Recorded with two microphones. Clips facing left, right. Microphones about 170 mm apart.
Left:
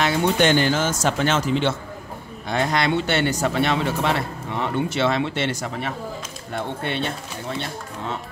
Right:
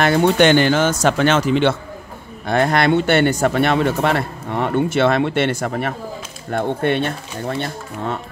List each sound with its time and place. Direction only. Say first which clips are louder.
0.0 s speech: right 5 dB; 55° right (ahead or behind)
2.4 s speech: right 6 dB; 55° right (ahead or behind)